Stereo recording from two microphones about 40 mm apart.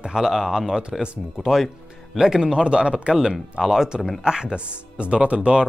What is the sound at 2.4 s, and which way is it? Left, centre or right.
Speech, right.